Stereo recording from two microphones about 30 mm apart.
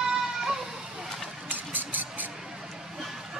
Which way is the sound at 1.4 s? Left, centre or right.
Right.